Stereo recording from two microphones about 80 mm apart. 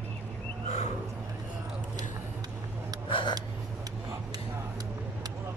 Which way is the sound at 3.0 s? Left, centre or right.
Left.